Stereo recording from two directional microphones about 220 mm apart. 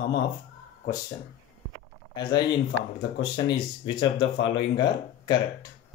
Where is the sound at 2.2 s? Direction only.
20° left (ahead or behind).